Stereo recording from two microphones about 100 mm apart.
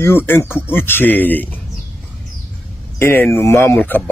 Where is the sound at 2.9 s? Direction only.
20° left (ahead or behind).